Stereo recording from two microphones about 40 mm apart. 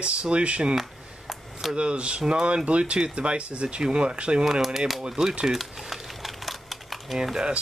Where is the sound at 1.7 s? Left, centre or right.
Right.